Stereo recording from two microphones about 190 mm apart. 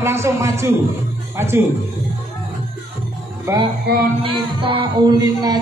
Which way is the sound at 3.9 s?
60° right (ahead or behind).